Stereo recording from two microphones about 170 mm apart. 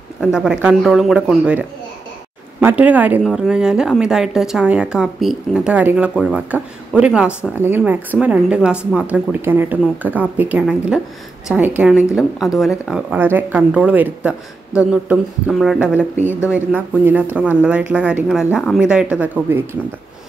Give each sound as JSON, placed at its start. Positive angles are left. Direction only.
{"t": 0.2, "sound": "a woman's voice", "side_deg": -5}